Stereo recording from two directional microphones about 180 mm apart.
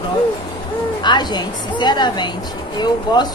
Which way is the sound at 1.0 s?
25° left (ahead or behind).